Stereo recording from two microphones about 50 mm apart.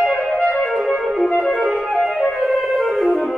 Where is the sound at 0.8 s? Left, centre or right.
Centre.